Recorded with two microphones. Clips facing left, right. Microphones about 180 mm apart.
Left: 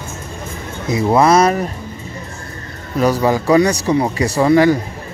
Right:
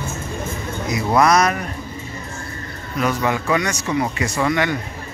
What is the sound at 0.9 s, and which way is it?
Speech, 30° left (ahead or behind).